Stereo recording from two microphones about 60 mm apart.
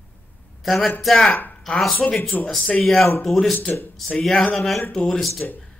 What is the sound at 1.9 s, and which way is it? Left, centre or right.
Speech, left.